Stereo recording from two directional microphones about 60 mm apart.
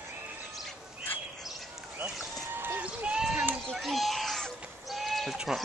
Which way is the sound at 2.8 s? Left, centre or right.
Centre.